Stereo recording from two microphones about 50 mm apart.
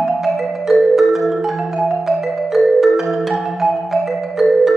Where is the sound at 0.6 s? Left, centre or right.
Centre.